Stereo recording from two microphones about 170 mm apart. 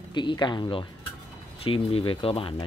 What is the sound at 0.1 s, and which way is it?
Speech, 25° left (ahead or behind).